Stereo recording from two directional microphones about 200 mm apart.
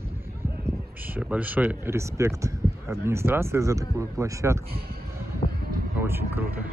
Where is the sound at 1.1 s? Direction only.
10° right (ahead or behind).